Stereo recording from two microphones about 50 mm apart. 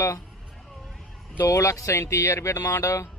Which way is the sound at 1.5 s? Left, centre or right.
Left.